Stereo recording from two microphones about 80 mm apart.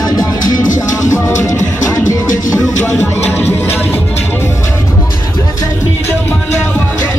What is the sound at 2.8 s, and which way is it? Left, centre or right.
Music, left.